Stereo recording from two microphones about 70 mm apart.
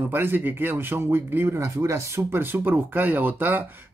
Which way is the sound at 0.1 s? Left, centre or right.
Right.